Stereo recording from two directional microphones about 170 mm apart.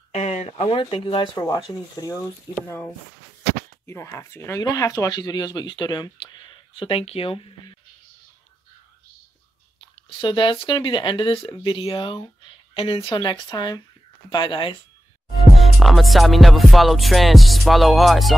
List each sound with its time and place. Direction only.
0.1 s speech: 45° left (ahead or behind)
9.8 s speech: 30° left (ahead or behind)
15.5 s music: centre (ahead or behind)